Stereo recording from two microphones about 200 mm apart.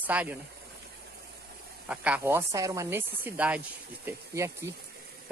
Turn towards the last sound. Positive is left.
turn(degrees=-10)  # may be behind; listen again after turning